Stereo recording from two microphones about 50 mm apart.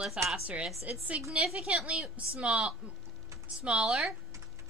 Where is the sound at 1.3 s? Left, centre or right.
Centre.